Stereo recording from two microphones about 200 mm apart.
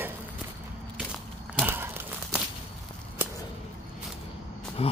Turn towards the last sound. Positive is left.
turn(degrees=30)  # may be behind; listen again after turning